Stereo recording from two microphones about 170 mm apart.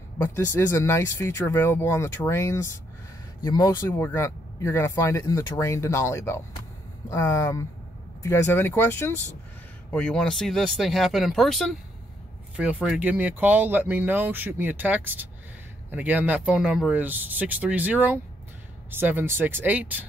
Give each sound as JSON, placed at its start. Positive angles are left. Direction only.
{"t": 0.6, "sound": "speech", "side_deg": 15}